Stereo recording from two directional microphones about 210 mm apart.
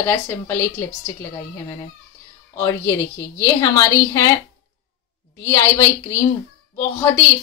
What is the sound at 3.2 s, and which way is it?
A woman's voice, 15° left (ahead or behind).